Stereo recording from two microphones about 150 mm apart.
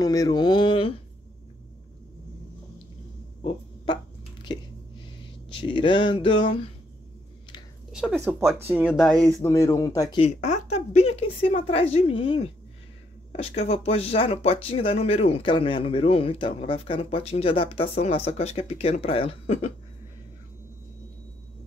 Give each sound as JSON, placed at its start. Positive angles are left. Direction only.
{"t": 0.0, "sound": "mantra", "side_deg": 25}
{"t": 3.4, "sound": "a sound", "side_deg": 30}
{"t": 5.6, "sound": "speech", "side_deg": 35}
{"t": 7.9, "sound": "a sound", "side_deg": -5}
{"t": 8.3, "sound": "speech", "side_deg": -15}
{"t": 9.4, "sound": "mantra", "side_deg": 20}
{"t": 10.3, "sound": "speech", "side_deg": 50}